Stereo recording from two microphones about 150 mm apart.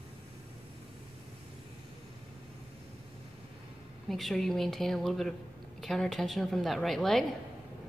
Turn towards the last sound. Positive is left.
turn(degrees=0)  # may be behind; listen again after turning